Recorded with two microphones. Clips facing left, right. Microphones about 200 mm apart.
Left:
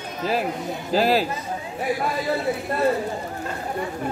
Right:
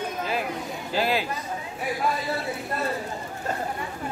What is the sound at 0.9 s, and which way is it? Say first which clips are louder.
Speech: left 6 dB; 40° left (ahead or behind).